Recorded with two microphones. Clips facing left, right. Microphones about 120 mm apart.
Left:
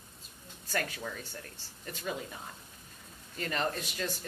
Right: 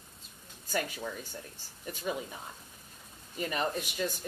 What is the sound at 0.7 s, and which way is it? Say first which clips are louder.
Speech: right 1 dB; 10° right (ahead or behind).